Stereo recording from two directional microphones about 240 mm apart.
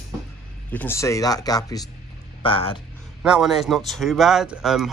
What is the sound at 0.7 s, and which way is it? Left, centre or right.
Speech, centre.